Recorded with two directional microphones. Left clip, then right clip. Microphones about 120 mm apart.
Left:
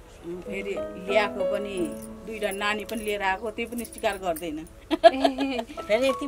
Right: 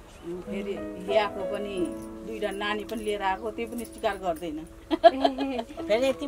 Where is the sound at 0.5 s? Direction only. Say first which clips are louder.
Left 4 dB; 5° left (ahead or behind).